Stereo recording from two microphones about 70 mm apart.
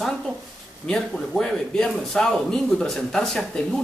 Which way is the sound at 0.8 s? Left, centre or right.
Centre.